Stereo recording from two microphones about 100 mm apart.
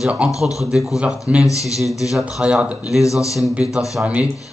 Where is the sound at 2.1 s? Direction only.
10° right (ahead or behind).